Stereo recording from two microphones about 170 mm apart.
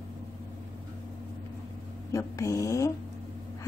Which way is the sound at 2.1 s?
20° left (ahead or behind).